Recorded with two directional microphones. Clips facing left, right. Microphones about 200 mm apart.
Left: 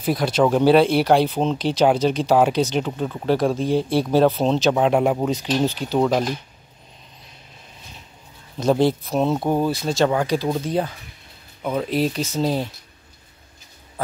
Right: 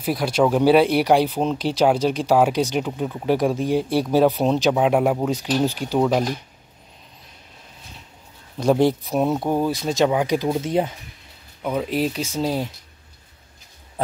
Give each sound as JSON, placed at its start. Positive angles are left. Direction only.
{"t": 0.0, "sound": "speech", "side_deg": -10}
{"t": 8.5, "sound": "speech", "side_deg": -15}
{"t": 9.4, "sound": "speech", "side_deg": 0}
{"t": 9.7, "sound": "speech", "side_deg": -15}
{"t": 11.6, "sound": "speech", "side_deg": -5}